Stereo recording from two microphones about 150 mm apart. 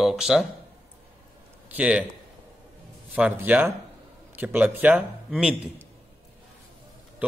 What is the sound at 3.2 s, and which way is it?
Speech, 10° right (ahead or behind).